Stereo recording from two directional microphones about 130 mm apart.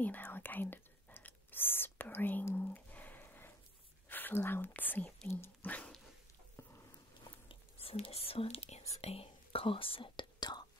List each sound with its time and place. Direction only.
0.0 s whispering: 15° left (ahead or behind)
6.5 s a sound: 20° left (ahead or behind)
7.2 s whispering: 45° left (ahead or behind)